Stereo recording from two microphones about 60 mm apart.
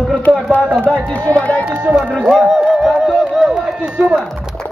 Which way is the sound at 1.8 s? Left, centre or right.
Right.